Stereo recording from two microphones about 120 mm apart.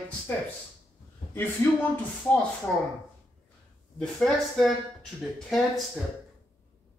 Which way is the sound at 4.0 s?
Centre (ahead or behind).